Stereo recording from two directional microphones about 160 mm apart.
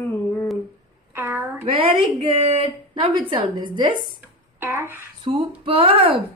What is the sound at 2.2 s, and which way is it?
A woman's voice, 40° right (ahead or behind).